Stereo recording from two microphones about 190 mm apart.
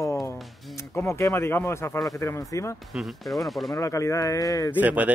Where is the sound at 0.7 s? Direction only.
15° left (ahead or behind).